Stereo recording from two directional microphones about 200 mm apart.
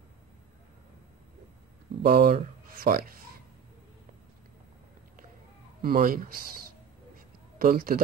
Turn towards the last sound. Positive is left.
turn(degrees=-45)  # may be behind; listen again after turning